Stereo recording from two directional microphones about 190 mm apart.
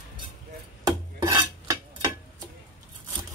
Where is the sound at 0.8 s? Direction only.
20° right (ahead or behind).